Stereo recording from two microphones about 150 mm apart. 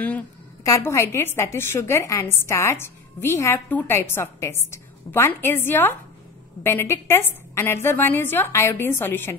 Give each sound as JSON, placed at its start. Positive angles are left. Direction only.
{"t": 0.7, "sound": "a woman's voice", "side_deg": 20}